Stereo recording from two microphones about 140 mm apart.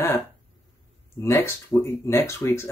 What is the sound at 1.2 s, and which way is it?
Speech, 20° left (ahead or behind).